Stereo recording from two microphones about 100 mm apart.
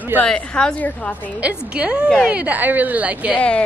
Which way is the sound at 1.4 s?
10° right (ahead or behind).